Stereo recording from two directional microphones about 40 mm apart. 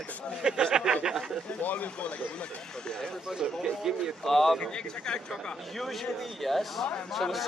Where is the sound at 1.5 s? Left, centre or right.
Left; by 3.2 s centre.